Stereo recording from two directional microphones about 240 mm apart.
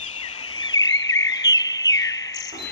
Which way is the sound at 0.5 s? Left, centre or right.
Centre.